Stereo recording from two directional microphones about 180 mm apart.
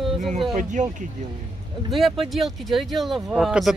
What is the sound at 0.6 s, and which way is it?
Speech, 45° right (ahead or behind).